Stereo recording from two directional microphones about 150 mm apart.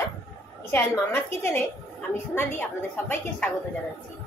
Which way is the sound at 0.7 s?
15° left (ahead or behind).